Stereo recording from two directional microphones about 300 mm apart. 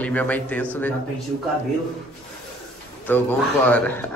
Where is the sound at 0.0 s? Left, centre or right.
Centre.